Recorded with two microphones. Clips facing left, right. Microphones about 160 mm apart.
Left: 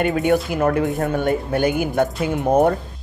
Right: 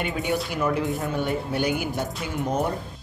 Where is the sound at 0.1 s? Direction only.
50° left (ahead or behind).